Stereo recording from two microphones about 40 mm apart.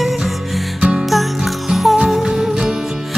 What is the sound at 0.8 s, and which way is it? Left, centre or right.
Music, centre.